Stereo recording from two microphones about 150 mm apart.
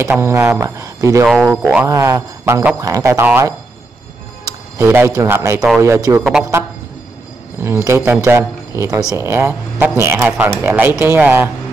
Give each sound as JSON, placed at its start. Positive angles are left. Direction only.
{"t": 0.0, "sound": "speech", "side_deg": -15}
{"t": 4.7, "sound": "speech", "side_deg": -15}
{"t": 7.6, "sound": "speech", "side_deg": -20}